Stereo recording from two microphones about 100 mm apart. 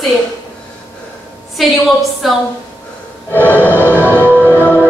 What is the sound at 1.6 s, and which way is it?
Speech, centre (ahead or behind).